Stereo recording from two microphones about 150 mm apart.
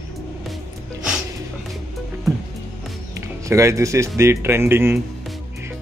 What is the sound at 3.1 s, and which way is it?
Music, 20° right (ahead or behind).